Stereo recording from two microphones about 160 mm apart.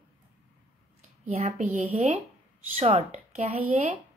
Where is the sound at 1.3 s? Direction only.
45° right (ahead or behind).